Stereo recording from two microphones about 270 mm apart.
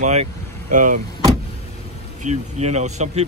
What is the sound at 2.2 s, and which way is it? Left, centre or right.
Speech, right.